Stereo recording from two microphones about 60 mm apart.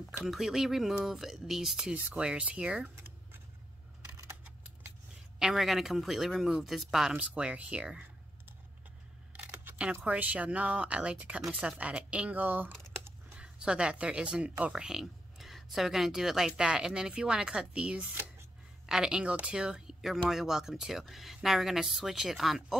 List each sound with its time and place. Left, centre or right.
0.2 s speech: centre
5.4 s speech: centre
7.2 s speech: right
9.3 s camera: right
10.0 s speech: right
13.4 s speech: centre
14.7 s speech: centre